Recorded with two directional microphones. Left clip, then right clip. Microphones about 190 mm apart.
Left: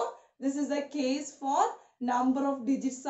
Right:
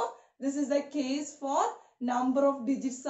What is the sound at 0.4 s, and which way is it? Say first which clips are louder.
A woman's voice: right 2 dB; 20° left (ahead or behind).